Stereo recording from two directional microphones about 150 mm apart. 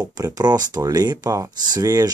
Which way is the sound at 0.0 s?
25° right (ahead or behind).